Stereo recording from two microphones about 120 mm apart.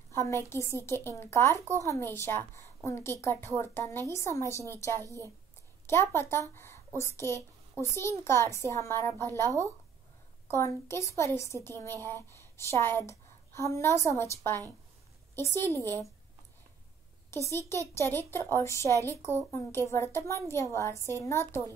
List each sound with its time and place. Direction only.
0.1 s a woman's voice: 20° left (ahead or behind)
5.9 s a woman's voice: 20° left (ahead or behind)
10.5 s a woman's voice: 20° left (ahead or behind)
15.3 s a woman's voice: 20° left (ahead or behind)
17.3 s a woman's voice: 25° left (ahead or behind)